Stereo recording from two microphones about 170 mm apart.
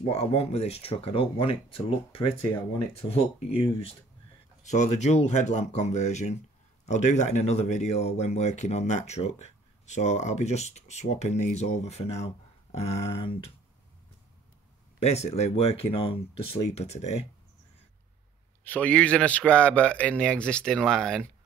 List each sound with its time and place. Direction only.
0.0 s speech: 35° left (ahead or behind)
15.0 s speech: 40° left (ahead or behind)
18.6 s speech: 10° left (ahead or behind)